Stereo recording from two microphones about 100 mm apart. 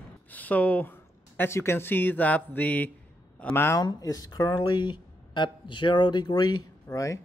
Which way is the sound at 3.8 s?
40° left (ahead or behind).